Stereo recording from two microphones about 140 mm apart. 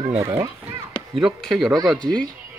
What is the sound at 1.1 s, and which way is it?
Speech, centre (ahead or behind).